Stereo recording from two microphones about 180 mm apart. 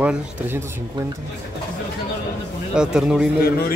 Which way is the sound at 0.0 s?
10° right (ahead or behind).